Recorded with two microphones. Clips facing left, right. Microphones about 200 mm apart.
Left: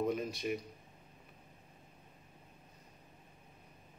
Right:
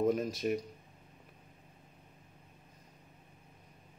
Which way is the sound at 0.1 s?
45° right (ahead or behind).